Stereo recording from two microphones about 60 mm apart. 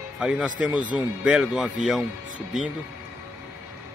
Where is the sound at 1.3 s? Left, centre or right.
Centre.